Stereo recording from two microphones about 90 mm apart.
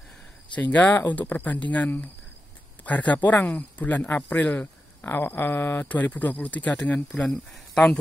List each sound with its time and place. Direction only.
0.6 s speech: 15° left (ahead or behind)